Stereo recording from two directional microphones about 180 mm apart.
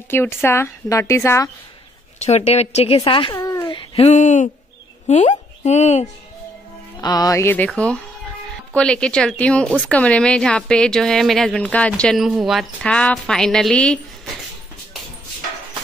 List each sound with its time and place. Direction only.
0.1 s a woman's voice: 10° left (ahead or behind)
2.1 s speech: 35° left (ahead or behind)
3.3 s a sound: 20° left (ahead or behind); by 4.5 s 40° left (ahead or behind)
5.0 s a woman's voice: 40° left (ahead or behind)
7.0 s a woman's voice: 20° left (ahead or behind); by 14.3 s 5° left (ahead or behind)